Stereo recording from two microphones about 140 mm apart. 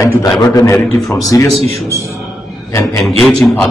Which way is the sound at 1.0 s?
Centre (ahead or behind).